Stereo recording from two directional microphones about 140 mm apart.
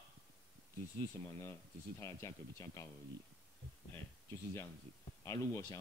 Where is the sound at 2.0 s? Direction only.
20° left (ahead or behind).